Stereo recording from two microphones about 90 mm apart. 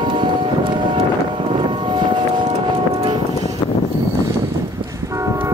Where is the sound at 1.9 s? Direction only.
60° right (ahead or behind).